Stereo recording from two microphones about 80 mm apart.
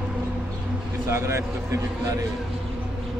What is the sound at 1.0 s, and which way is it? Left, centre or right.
Speech, right.